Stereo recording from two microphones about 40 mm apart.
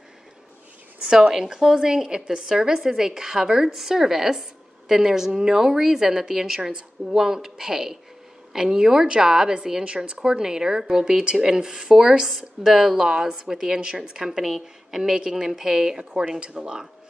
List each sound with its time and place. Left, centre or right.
1.3 s a woman's voice: centre